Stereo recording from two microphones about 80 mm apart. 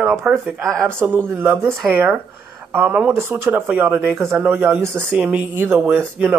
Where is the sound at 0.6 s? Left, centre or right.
Right; by 3.2 s centre.